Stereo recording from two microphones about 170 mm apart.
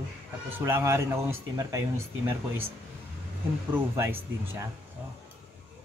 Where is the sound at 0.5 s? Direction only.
15° right (ahead or behind).